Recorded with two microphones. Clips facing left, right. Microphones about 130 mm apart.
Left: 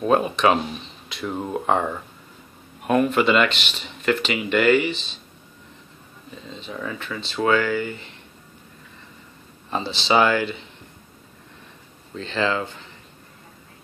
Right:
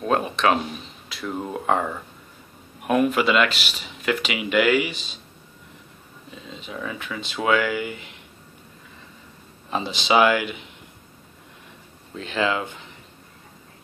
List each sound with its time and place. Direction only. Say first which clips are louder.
0.0 s speech: left 3 dB; centre (ahead or behind)
6.5 s speech: left 1 dB; 5° right (ahead or behind)
9.7 s speech: even; 10° right (ahead or behind)
12.2 s speech: even; 10° right (ahead or behind)